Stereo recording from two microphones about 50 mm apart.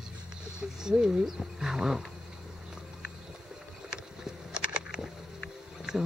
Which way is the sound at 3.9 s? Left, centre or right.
Centre.